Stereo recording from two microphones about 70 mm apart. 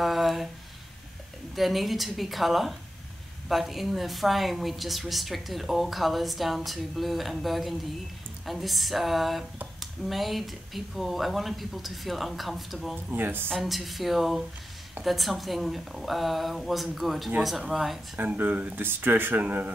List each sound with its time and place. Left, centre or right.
0.0 s a sound: centre
1.5 s a woman's voice: centre
13.1 s speech: right
13.5 s a woman's voice: centre
18.1 s speech: right